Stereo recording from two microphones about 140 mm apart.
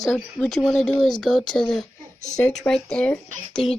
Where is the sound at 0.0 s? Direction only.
Centre (ahead or behind).